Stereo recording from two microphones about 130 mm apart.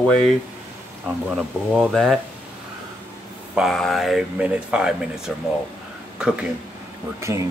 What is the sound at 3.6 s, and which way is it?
Speech, centre (ahead or behind).